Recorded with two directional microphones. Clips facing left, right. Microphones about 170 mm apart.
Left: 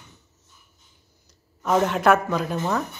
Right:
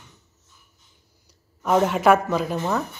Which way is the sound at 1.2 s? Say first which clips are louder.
Right 1 dB; 5° right (ahead or behind).